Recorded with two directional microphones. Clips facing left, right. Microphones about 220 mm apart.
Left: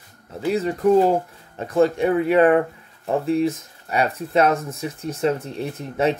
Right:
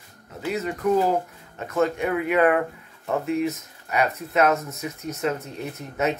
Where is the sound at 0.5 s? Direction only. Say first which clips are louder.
Left 5 dB; 30° left (ahead or behind).